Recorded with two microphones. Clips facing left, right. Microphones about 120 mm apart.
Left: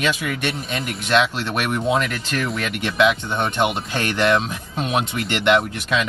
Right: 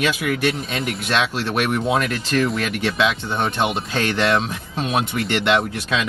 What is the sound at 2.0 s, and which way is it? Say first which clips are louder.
Speech: right 4 dB; 25° right (ahead or behind).